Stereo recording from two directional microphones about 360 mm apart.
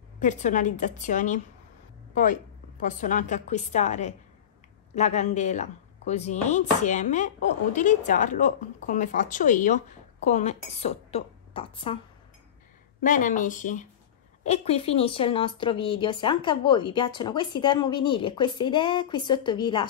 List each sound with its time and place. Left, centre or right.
0.2 s speech: centre
2.8 s speech: left
13.0 s speech: left